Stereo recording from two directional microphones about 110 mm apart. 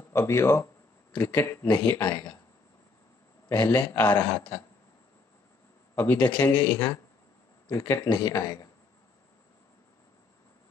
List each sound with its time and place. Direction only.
0.1 s a man's voice: 25° left (ahead or behind)
2.0 s speech: 35° left (ahead or behind)
3.5 s a man's voice: 25° left (ahead or behind)
5.9 s a man's voice: 15° left (ahead or behind)
8.0 s speech: 35° left (ahead or behind)